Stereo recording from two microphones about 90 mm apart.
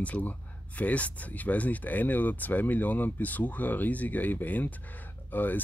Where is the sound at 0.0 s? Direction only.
15° left (ahead or behind).